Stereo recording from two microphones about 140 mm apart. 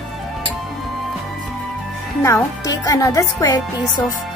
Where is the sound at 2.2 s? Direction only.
25° left (ahead or behind).